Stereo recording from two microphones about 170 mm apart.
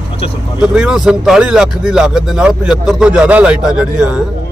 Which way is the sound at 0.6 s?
5° right (ahead or behind).